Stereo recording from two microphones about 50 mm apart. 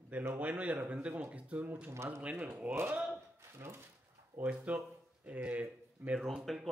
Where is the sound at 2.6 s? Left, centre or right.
Right.